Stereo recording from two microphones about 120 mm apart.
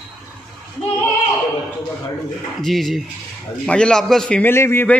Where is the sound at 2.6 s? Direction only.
Centre (ahead or behind).